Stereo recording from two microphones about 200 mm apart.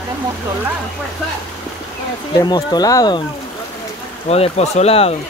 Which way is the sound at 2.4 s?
20° left (ahead or behind).